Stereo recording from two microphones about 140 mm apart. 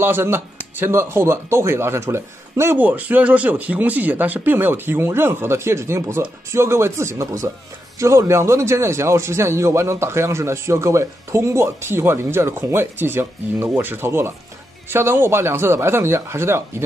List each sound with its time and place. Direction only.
0.0 s speech: 15° right (ahead or behind)